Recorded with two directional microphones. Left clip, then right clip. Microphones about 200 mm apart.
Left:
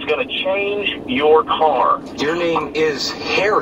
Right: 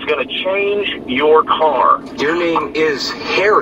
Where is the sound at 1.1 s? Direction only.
10° right (ahead or behind).